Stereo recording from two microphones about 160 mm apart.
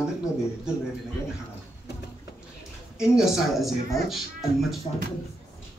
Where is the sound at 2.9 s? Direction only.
5° right (ahead or behind).